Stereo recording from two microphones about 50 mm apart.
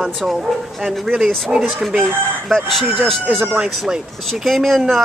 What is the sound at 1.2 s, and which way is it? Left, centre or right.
Speech, centre.